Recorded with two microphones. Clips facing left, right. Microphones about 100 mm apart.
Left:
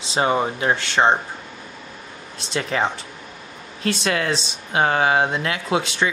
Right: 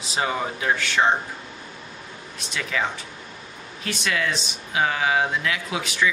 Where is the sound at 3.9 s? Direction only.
40° left (ahead or behind).